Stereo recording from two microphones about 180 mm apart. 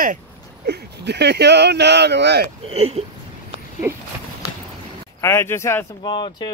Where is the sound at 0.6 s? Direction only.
65° right (ahead or behind).